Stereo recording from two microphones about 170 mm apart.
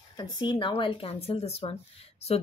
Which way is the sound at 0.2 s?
25° left (ahead or behind).